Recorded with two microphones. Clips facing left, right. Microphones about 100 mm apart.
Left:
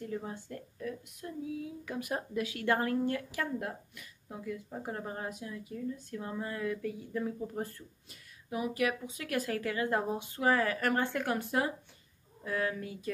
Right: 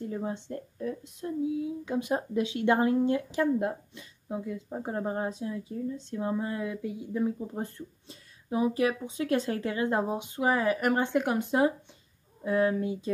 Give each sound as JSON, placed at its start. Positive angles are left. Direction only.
{"t": 0.0, "sound": "speech", "side_deg": -25}